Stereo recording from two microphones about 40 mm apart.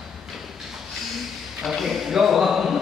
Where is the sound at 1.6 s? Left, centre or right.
Centre.